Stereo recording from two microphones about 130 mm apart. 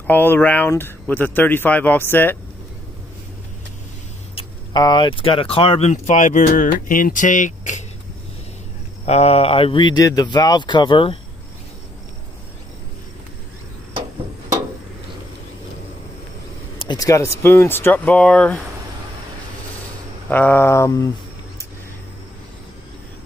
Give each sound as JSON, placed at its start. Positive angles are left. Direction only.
{"t": 0.0, "sound": "speech", "side_deg": 15}
{"t": 4.7, "sound": "speech", "side_deg": 35}
{"t": 5.9, "sound": "speech", "side_deg": 70}
{"t": 9.0, "sound": "a man's voice", "side_deg": 55}
{"t": 16.7, "sound": "speech", "side_deg": 35}
{"t": 20.2, "sound": "a sound", "side_deg": 15}